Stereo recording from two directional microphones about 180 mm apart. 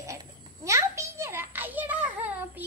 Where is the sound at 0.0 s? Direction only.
20° right (ahead or behind).